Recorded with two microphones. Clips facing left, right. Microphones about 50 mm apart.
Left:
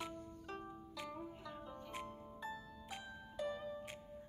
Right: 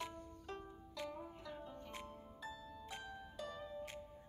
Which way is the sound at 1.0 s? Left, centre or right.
Centre.